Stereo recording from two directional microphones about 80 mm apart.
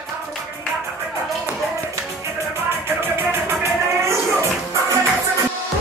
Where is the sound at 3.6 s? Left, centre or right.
Right.